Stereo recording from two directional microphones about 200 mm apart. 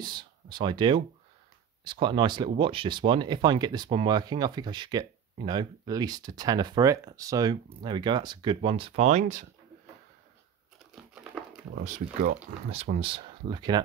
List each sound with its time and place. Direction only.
0.0 s speech: 20° right (ahead or behind); by 9.5 s 35° right (ahead or behind)
11.1 s crumpling: 5° right (ahead or behind)
11.8 s speech: 40° right (ahead or behind); by 13.8 s 20° right (ahead or behind)